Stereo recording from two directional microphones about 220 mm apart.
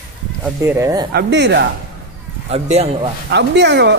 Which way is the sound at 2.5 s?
30° right (ahead or behind).